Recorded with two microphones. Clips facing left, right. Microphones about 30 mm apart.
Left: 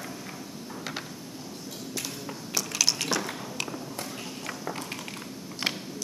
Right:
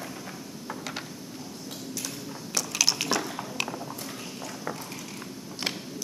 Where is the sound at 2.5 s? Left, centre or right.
Centre.